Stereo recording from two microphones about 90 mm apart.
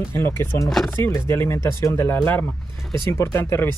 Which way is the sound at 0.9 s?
30° left (ahead or behind).